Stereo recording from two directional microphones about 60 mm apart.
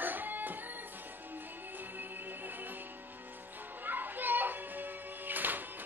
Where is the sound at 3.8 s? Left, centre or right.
Right.